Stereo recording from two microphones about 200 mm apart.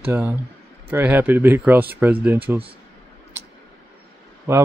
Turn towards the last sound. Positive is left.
turn(degrees=-15)  # may be behind; listen again after turning